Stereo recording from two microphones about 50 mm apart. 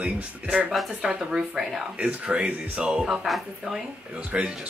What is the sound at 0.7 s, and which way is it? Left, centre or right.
Speech, centre.